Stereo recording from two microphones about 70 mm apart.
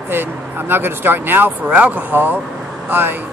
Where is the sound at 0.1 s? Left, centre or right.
Right.